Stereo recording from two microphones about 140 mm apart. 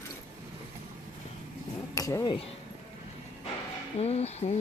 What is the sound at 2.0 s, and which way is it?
Speech, 25° left (ahead or behind).